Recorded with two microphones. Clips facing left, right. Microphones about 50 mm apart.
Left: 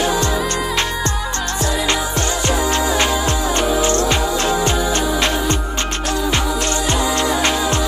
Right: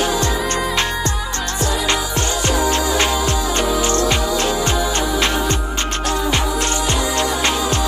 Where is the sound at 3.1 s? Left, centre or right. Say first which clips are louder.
Left 1 dB; left.